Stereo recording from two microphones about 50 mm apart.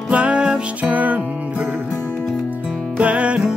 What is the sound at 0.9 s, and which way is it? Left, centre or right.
Music, right.